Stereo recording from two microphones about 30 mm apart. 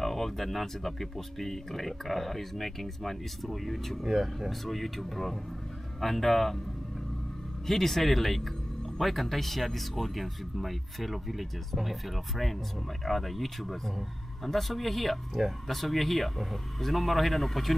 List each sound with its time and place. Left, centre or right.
0.0 s speech: centre
4.0 s speech: centre
4.5 s a man's voice: centre
7.6 s speech: centre
15.4 s speech: centre
15.7 s speech: centre